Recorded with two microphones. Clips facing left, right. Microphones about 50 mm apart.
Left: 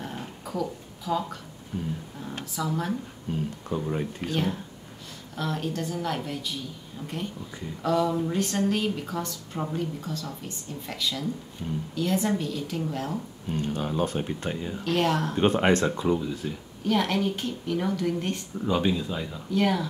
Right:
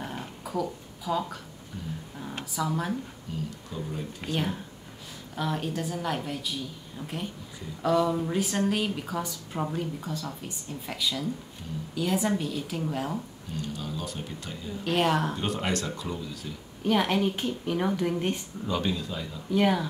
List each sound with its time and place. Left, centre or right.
0.0 s dog: centre
2.5 s a woman's voice: centre
3.3 s speech: left
4.3 s a woman's voice: centre
13.5 s speech: left
14.9 s a woman's voice: centre
15.3 s speech: left
16.8 s a woman's voice: centre
18.7 s speech: centre
19.5 s a woman's voice: centre